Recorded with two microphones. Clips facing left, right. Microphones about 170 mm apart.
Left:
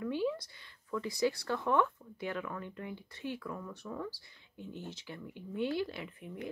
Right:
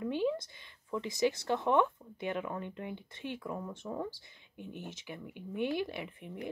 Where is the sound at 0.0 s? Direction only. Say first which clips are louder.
Right 2 dB; 20° right (ahead or behind).